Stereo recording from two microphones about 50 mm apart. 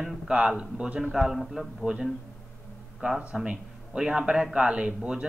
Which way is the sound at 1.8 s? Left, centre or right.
Centre.